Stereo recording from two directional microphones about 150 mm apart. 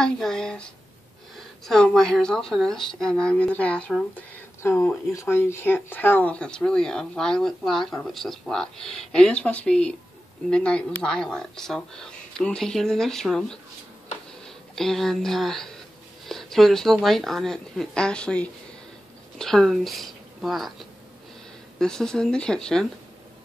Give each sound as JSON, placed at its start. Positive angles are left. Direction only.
{"t": 0.0, "sound": "speech", "side_deg": 5}
{"t": 1.7, "sound": "speech", "side_deg": 5}
{"t": 4.6, "sound": "speech", "side_deg": 20}
{"t": 21.7, "sound": "speech", "side_deg": 5}